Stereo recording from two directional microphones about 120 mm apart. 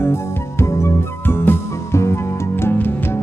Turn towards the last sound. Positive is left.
turn(degrees=20)  # may be behind; listen again after turning